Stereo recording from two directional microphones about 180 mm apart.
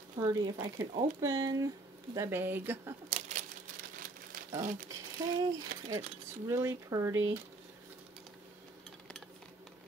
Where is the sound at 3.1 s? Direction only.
40° right (ahead or behind).